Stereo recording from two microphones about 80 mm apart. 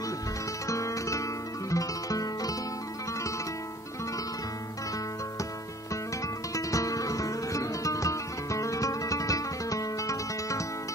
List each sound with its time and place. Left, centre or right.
0.7 s music: left
6.5 s music: left